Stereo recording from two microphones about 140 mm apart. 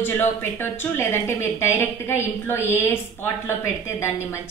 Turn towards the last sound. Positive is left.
turn(degrees=20)  # may be behind; listen again after turning